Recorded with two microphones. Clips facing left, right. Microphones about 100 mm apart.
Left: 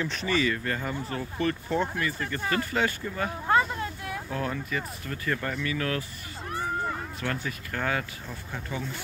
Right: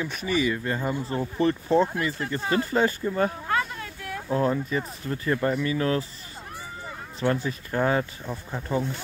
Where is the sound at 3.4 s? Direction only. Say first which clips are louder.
Left 3 dB; 25° left (ahead or behind).